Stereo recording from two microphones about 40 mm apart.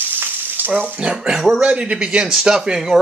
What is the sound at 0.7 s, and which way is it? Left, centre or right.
Speech, right.